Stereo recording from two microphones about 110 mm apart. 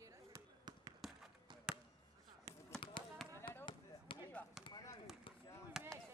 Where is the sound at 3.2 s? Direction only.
5° left (ahead or behind).